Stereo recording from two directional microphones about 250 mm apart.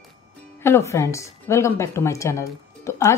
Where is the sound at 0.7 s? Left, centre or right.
Centre.